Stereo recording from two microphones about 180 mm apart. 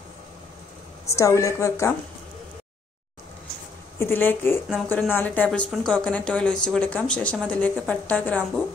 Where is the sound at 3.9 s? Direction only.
10° left (ahead or behind).